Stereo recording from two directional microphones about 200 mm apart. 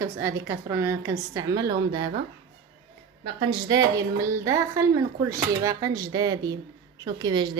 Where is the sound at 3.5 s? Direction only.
20° right (ahead or behind).